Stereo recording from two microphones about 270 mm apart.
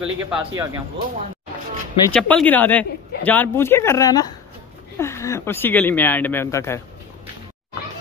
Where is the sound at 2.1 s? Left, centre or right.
Centre.